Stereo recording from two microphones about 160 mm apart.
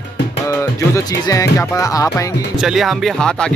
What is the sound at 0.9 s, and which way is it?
Speech, 20° left (ahead or behind).